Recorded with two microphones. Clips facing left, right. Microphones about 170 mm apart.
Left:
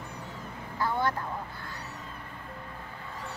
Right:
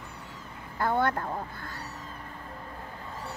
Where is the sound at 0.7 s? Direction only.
55° right (ahead or behind).